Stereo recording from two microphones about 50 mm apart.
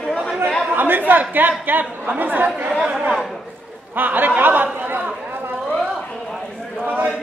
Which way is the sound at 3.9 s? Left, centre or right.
Right.